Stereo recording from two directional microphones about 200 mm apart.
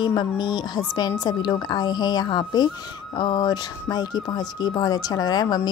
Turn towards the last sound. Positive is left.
turn(degrees=20)  # may be behind; listen again after turning